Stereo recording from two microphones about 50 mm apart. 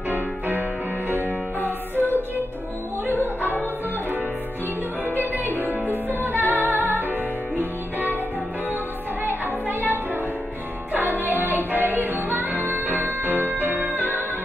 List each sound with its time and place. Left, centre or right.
0.1 s music: right
1.6 s music: left
3.1 s music: right
5.2 s music: right
9.2 s music: right